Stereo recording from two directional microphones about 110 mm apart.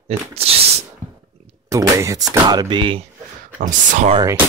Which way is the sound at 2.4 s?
40° right (ahead or behind).